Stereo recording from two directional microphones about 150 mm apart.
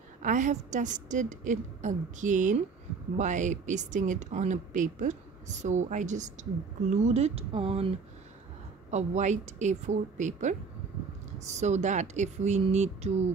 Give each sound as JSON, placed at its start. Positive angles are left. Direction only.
{"t": 0.2, "sound": "a woman's voice", "side_deg": -55}
{"t": 8.9, "sound": "speech", "side_deg": -50}
{"t": 11.5, "sound": "speech", "side_deg": -50}